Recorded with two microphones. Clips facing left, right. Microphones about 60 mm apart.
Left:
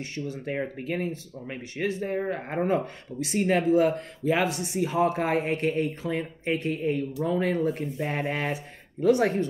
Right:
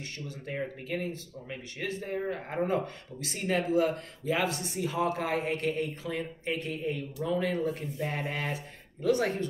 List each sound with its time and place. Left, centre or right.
0.0 s speech: left
1.9 s speech: centre
2.1 s speech: left